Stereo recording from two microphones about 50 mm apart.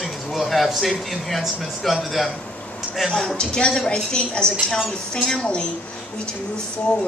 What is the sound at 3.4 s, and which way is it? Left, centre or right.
A woman's voice, centre.